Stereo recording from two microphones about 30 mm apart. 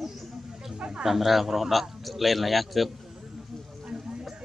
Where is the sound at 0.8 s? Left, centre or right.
Right.